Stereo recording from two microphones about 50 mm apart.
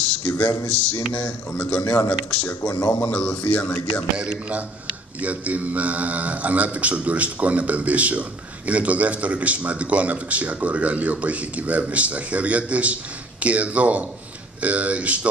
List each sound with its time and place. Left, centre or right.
0.3 s speech: left
0.7 s a sound: left
1.1 s speech: left
4.2 s a man's voice: centre